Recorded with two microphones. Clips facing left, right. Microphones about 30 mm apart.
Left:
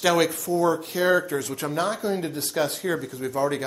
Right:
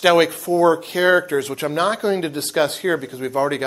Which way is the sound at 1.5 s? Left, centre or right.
Right.